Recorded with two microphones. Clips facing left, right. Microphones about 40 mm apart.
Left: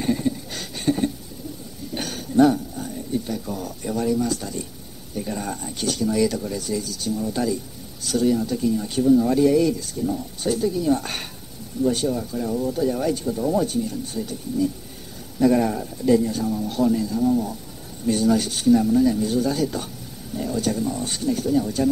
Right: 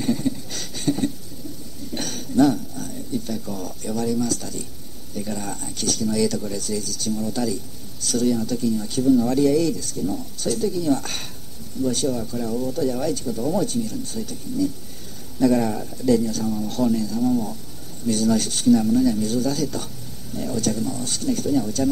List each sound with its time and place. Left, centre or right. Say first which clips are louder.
0.0 s a sound: even; centre
2.0 s a sound: left 1 dB; centre
5.1 s speech: left 1 dB; centre
8.6 s speech: left 1 dB; left
18.0 s speech: left 1 dB; left
18.3 s speech: right 1 dB; centre
21.3 s speech: even; centre